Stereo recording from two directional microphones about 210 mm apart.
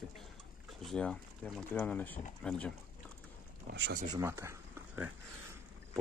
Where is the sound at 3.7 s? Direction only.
45° right (ahead or behind).